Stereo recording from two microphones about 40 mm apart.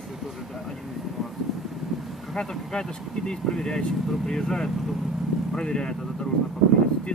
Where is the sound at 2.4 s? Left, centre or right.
Left.